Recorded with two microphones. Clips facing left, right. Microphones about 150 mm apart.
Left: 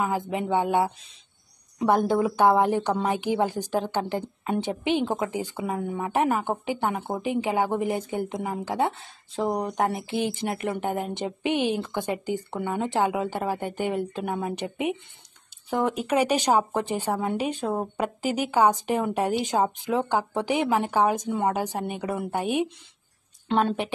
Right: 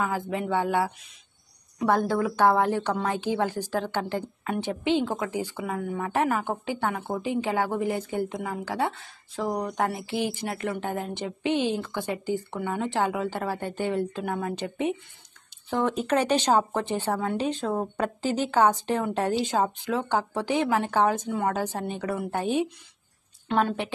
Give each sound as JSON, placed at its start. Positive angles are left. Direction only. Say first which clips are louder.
{"t": 0.0, "sound": "a woman's voice", "louder": "left 1 dB", "side_deg": 20}